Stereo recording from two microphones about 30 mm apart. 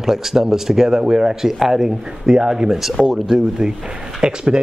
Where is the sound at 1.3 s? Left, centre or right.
Centre.